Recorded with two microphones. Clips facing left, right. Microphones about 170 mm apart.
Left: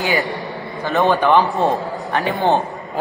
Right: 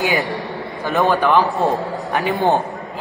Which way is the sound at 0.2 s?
Centre (ahead or behind).